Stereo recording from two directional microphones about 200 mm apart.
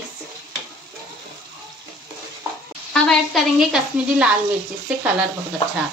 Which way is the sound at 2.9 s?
Centre (ahead or behind).